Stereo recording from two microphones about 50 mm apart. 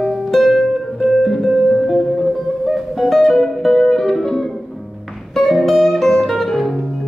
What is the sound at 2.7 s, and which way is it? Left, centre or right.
Music, centre.